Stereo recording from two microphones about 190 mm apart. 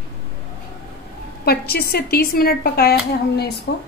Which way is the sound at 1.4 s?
55° left (ahead or behind).